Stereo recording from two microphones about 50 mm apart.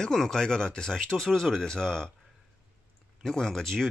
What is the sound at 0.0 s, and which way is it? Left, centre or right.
Speech, centre.